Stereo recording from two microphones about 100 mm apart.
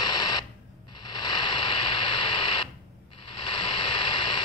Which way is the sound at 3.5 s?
50° left (ahead or behind).